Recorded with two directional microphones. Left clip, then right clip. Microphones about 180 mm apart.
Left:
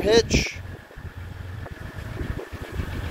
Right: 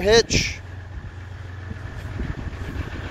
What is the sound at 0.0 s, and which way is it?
Speech, 10° right (ahead or behind).